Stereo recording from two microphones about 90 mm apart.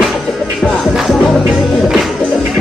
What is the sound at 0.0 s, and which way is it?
Music, centre (ahead or behind).